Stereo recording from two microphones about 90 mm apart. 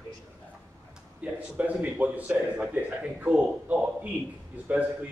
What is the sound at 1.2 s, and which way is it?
A man's voice, 15° right (ahead or behind).